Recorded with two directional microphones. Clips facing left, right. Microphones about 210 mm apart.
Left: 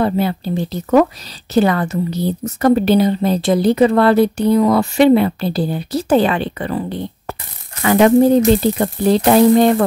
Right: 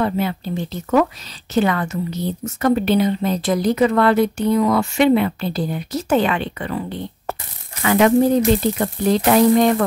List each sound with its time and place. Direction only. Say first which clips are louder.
0.0 s a woman's voice: left 4 dB; 35° left (ahead or behind)